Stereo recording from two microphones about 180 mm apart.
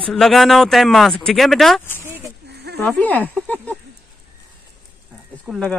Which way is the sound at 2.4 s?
65° right (ahead or behind).